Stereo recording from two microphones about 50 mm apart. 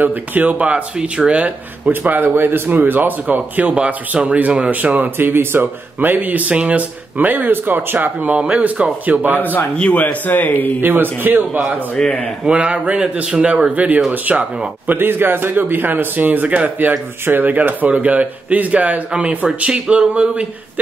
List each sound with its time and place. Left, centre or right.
0.0 s speech: right
0.6 s speech: right
1.9 s speech: right
3.7 s speech: right
5.1 s speech: right
9.4 s a man's voice: left
10.8 s speech: right
12.0 s speech: centre
12.4 s speech: right
14.9 s speech: right